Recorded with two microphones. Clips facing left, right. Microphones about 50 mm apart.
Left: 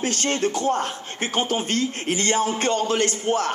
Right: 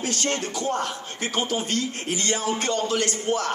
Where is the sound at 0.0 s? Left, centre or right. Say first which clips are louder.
Left 4 dB; left.